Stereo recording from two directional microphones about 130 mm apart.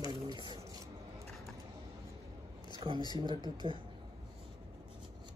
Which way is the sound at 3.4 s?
35° right (ahead or behind).